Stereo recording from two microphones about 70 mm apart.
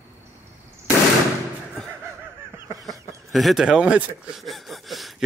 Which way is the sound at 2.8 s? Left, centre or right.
Centre.